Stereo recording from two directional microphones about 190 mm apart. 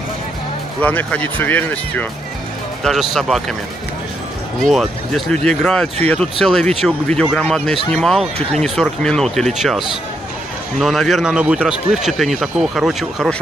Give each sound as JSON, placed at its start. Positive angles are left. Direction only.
{"t": 0.7, "sound": "speech", "side_deg": 10}
{"t": 4.6, "sound": "speech", "side_deg": 0}
{"t": 8.4, "sound": "speech", "side_deg": -35}
{"t": 8.6, "sound": "speech", "side_deg": 0}